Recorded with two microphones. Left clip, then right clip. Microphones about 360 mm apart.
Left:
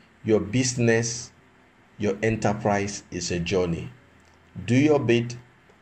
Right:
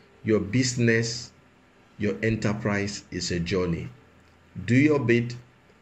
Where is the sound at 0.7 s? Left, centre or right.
Left.